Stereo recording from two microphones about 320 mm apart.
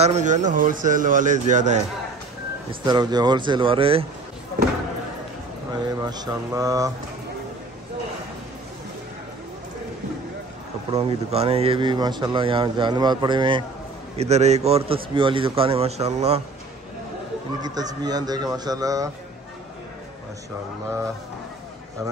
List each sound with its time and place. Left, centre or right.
0.0 s a man's voice: right
2.8 s speech: centre
5.7 s speech: centre
10.9 s a man's voice: centre
17.6 s speech: centre